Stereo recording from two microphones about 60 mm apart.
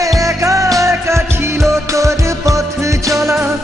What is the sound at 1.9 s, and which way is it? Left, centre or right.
Music, right.